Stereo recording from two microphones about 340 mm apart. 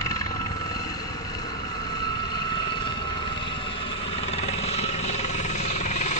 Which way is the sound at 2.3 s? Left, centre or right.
Centre.